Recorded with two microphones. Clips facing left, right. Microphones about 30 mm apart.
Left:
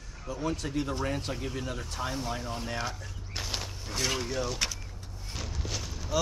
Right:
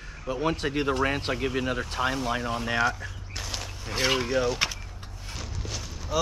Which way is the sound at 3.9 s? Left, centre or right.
Right.